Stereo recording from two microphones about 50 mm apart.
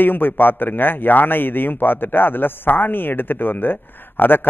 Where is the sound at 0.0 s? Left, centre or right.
Left.